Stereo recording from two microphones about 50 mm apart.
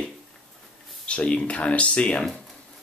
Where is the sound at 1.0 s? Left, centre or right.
Left.